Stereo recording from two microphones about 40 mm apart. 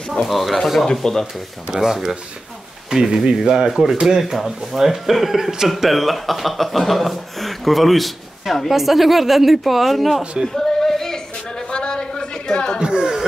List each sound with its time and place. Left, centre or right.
0.1 s speech: centre
1.0 s speech: centre
1.7 s speech: centre
10.5 s a sound: centre
12.7 s chatter: centre